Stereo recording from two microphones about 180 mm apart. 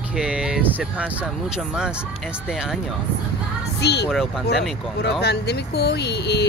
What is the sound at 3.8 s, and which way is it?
Speech, 65° left (ahead or behind).